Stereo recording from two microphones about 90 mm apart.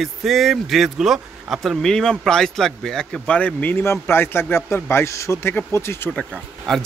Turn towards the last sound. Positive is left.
turn(degrees=5)  # may be behind; listen again after turning